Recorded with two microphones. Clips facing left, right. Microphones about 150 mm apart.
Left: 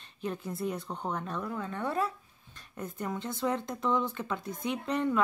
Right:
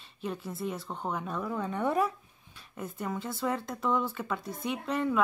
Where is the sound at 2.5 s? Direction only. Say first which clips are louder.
Even; 5° right (ahead or behind).